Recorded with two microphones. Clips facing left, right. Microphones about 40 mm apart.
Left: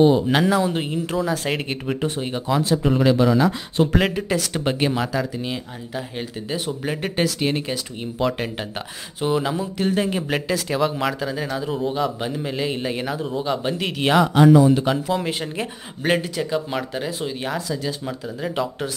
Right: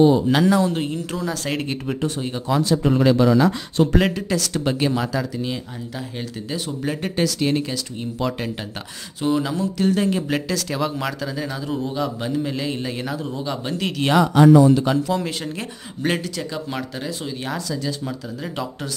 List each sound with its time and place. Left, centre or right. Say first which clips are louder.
0.0 s speech: right 1 dB; centre
2.0 s speech: even; left
2.4 s speech: right 1 dB; centre
8.2 s speech: left 3 dB; centre